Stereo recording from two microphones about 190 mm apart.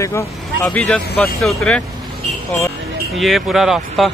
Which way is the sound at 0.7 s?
5° left (ahead or behind).